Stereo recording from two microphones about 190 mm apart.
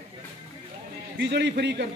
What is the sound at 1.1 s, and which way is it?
Speech, 65° right (ahead or behind).